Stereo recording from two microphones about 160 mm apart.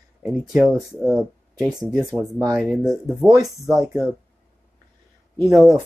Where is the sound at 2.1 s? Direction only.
20° right (ahead or behind).